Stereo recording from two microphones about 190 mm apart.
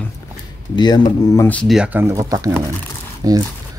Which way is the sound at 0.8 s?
20° left (ahead or behind).